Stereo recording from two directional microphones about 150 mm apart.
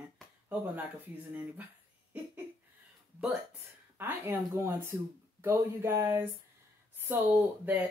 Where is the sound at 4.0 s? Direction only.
15° right (ahead or behind).